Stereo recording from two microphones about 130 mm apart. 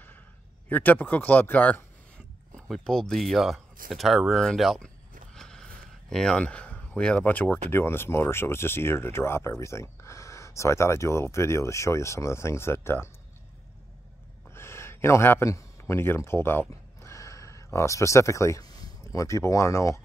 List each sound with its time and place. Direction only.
0.7 s speech: 15° left (ahead or behind)
5.3 s a sound: 5° left (ahead or behind)
6.0 s speech: 5° left (ahead or behind)
14.5 s speech: 20° left (ahead or behind)